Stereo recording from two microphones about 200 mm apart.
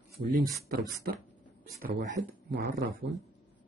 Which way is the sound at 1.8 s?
50° right (ahead or behind).